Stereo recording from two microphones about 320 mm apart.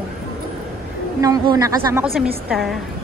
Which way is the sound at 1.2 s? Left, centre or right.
Centre.